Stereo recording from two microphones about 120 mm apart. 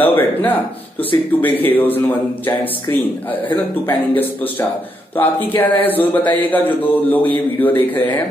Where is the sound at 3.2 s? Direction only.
15° left (ahead or behind).